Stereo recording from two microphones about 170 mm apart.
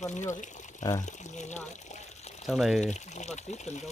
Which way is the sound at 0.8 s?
20° left (ahead or behind).